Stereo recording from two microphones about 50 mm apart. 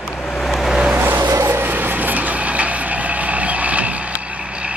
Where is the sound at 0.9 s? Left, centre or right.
Right.